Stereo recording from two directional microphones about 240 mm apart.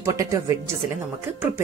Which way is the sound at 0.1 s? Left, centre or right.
Centre.